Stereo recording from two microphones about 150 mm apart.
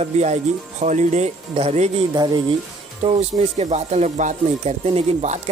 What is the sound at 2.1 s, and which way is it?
Speech, 25° right (ahead or behind).